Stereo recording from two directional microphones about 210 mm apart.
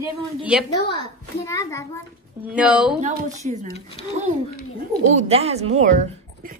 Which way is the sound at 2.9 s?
35° right (ahead or behind).